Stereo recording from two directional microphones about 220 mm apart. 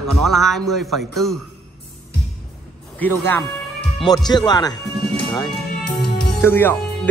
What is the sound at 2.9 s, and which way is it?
Speech, 10° left (ahead or behind).